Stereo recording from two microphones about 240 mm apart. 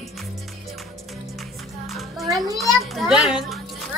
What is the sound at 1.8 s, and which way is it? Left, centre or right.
Music, centre.